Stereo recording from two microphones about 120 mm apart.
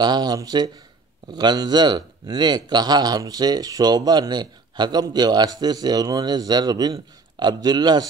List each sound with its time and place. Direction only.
0.0 s speech: 35° right (ahead or behind)